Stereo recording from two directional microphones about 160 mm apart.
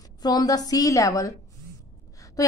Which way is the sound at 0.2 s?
25° left (ahead or behind).